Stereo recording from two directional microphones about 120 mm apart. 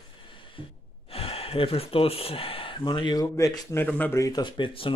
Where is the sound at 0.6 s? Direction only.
45° left (ahead or behind).